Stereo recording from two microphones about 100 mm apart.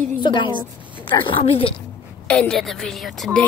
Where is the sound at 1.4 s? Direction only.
70° left (ahead or behind).